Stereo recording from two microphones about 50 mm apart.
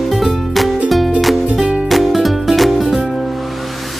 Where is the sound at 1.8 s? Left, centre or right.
Centre.